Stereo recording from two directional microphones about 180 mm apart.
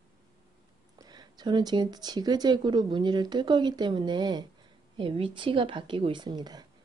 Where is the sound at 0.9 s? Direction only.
20° right (ahead or behind).